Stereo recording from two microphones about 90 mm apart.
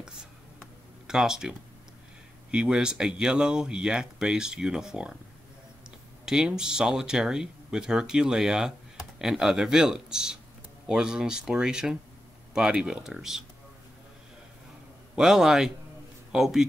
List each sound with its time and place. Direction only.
1.0 s speech: 5° right (ahead or behind)
15.1 s a man's voice: 5° right (ahead or behind)